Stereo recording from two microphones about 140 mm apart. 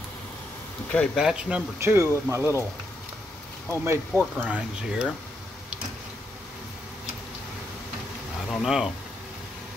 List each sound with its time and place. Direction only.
1.1 s speech: 5° right (ahead or behind)
1.8 s speech: 20° right (ahead or behind)
3.7 s speech: 15° right (ahead or behind)
8.5 s speech: centre (ahead or behind)